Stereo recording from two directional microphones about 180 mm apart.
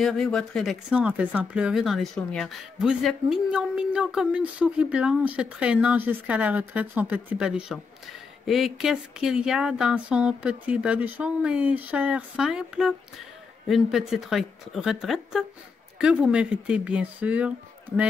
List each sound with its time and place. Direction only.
0.0 s speech: 5° left (ahead or behind)